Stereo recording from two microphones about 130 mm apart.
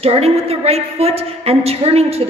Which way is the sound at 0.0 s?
50° right (ahead or behind).